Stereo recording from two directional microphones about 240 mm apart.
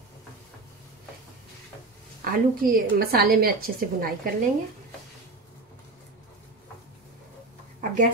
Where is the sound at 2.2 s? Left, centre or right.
Right.